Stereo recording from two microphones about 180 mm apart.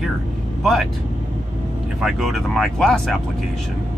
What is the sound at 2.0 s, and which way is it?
Speech, centre (ahead or behind).